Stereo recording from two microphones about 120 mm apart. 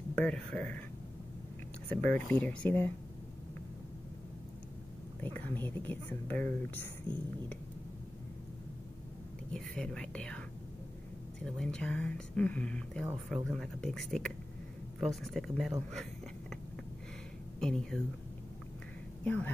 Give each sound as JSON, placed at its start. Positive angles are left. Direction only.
{"t": 0.1, "sound": "speech", "side_deg": 10}
{"t": 2.1, "sound": "speech", "side_deg": 15}
{"t": 5.2, "sound": "speech", "side_deg": 15}
{"t": 9.5, "sound": "speech", "side_deg": 5}
{"t": 11.4, "sound": "speech", "side_deg": 5}
{"t": 17.6, "sound": "speech", "side_deg": 5}
{"t": 19.2, "sound": "speech", "side_deg": 15}